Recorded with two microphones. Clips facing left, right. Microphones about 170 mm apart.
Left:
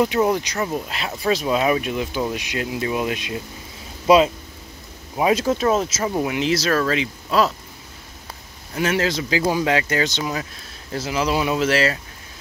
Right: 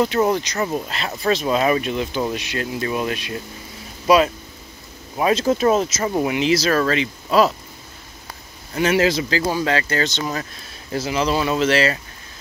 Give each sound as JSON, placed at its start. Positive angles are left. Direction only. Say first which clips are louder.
{"t": 0.2, "sound": "speech", "louder": "right 1 dB", "side_deg": 10}
{"t": 0.6, "sound": "speech", "louder": "right 1 dB", "side_deg": -5}
{"t": 5.1, "sound": "speech", "louder": "even", "side_deg": 15}
{"t": 5.5, "sound": "speech", "louder": "right 2 dB", "side_deg": -5}
{"t": 8.7, "sound": "speech", "louder": "right 4 dB", "side_deg": 0}
{"t": 9.3, "sound": "speech", "louder": "left 1 dB", "side_deg": 15}
{"t": 10.9, "sound": "speech", "louder": "right 1 dB", "side_deg": 0}